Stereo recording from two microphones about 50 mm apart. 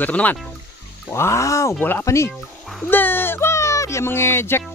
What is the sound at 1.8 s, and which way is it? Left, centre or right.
Speech, left.